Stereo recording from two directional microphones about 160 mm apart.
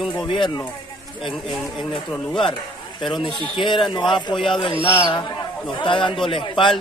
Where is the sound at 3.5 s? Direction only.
30° left (ahead or behind).